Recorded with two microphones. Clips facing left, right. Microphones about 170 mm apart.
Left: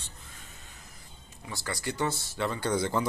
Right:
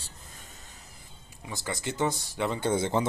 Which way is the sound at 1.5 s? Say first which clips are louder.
Right 1 dB; 20° right (ahead or behind).